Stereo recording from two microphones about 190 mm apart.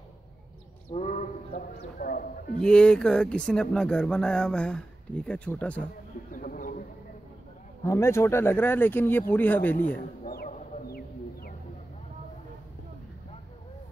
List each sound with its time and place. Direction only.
0.9 s sheep: 40° left (ahead or behind)
2.0 s speech: 50° left (ahead or behind)
2.6 s speech: 5° left (ahead or behind)
6.3 s bird: 45° left (ahead or behind)
7.8 s speech: 15° left (ahead or behind)
10.2 s music: 45° left (ahead or behind)